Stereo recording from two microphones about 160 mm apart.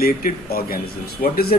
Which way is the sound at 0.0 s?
70° left (ahead or behind).